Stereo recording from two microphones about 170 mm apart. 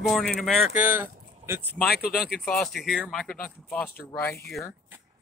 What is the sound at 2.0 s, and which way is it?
Speech, 65° left (ahead or behind).